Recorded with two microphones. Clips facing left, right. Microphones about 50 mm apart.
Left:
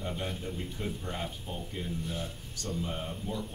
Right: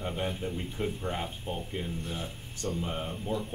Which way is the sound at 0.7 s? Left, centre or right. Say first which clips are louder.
Right 4 dB; right.